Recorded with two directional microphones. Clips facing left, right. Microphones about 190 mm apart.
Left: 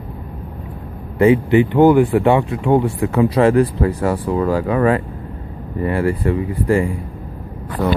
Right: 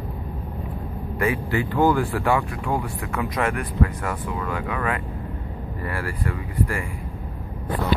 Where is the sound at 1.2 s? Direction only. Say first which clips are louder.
Left 12 dB; 20° left (ahead or behind).